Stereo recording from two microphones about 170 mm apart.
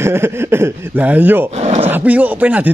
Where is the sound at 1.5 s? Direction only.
40° right (ahead or behind).